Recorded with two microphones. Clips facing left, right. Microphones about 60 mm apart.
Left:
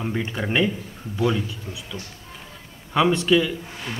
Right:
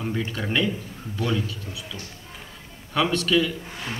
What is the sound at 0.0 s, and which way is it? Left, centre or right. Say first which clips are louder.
A man's voice: left 2 dB; centre.